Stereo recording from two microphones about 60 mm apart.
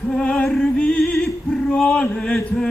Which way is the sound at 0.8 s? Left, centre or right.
Centre.